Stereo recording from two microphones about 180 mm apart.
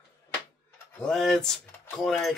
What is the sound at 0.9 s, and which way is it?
Speech, 5° left (ahead or behind).